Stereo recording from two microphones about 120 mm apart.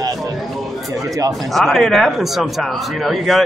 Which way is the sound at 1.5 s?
Centre (ahead or behind).